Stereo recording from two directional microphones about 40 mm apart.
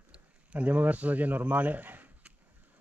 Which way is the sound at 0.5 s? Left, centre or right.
Right.